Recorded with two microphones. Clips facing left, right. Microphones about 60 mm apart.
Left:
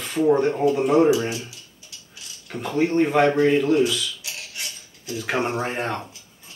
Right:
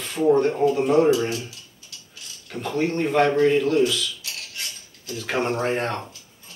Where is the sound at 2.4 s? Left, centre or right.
Centre.